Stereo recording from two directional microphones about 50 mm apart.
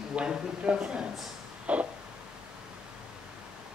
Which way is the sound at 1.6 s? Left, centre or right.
Right.